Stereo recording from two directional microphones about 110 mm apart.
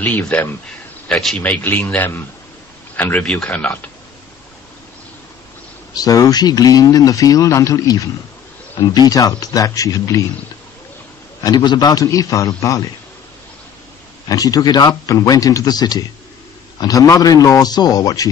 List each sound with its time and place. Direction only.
0.0 s a man's voice: 15° left (ahead or behind)
5.9 s speech: 35° left (ahead or behind)
11.4 s speech: 40° left (ahead or behind)
14.3 s speech: 35° left (ahead or behind)